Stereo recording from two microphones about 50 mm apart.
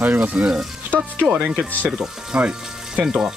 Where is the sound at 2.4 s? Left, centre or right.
Centre.